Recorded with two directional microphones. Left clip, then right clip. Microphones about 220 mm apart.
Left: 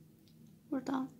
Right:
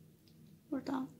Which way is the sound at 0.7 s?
10° left (ahead or behind).